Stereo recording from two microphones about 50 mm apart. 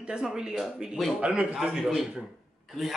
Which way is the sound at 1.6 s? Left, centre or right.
Centre.